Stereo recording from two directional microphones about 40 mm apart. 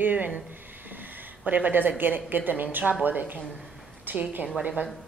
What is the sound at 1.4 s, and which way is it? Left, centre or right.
A woman's voice, right.